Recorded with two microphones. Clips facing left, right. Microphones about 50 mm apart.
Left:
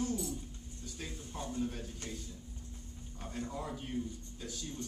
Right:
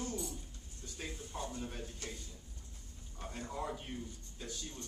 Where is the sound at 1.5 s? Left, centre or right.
Centre.